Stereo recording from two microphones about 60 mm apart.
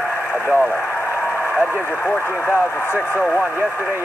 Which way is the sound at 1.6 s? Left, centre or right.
Left.